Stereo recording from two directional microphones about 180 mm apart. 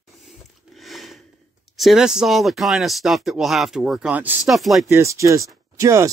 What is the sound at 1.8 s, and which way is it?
Speech, centre (ahead or behind).